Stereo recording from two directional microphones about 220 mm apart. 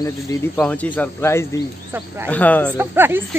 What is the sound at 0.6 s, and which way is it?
Speech, 5° left (ahead or behind).